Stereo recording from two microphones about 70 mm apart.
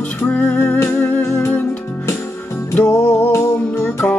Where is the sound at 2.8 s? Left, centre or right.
Left.